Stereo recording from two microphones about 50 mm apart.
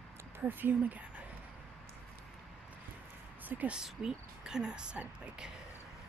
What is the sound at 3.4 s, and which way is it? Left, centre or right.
Speech, right.